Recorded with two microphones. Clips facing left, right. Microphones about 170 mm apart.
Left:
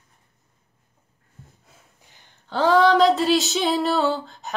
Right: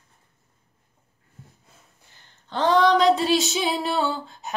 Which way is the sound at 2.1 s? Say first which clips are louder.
Left 3 dB; 10° left (ahead or behind).